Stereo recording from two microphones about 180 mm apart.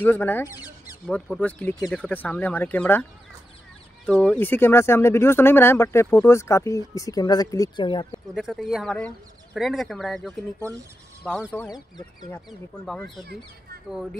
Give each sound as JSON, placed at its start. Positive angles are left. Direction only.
{"t": 0.0, "sound": "speech", "side_deg": 10}
{"t": 1.0, "sound": "speech", "side_deg": 5}
{"t": 8.4, "sound": "speech", "side_deg": 0}
{"t": 10.6, "sound": "speech", "side_deg": -15}
{"t": 11.3, "sound": "speech", "side_deg": 5}
{"t": 12.4, "sound": "speech", "side_deg": 0}